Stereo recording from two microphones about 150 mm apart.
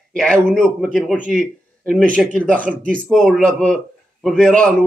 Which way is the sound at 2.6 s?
65° right (ahead or behind).